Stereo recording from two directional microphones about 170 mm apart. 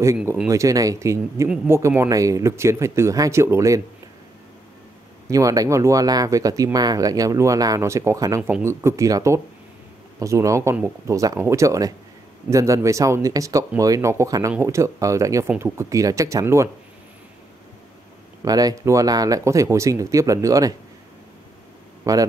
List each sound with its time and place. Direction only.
0.0 s speech: 15° right (ahead or behind)
5.3 s speech: 20° right (ahead or behind)
18.4 s speech: 20° right (ahead or behind)
22.0 s speech: 20° right (ahead or behind)